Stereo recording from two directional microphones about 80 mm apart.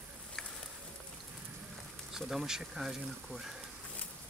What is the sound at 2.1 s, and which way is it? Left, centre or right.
Speech, centre.